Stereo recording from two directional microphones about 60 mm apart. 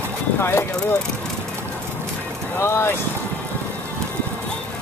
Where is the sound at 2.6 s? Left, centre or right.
Left.